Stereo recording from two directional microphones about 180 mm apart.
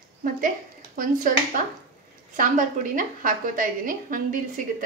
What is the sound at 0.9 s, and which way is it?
Speech, 50° right (ahead or behind).